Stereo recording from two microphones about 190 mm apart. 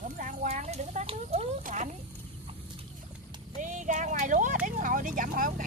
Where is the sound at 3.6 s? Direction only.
40° right (ahead or behind).